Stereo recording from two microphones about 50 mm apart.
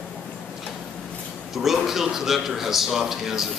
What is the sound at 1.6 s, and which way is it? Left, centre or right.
A man's voice, centre.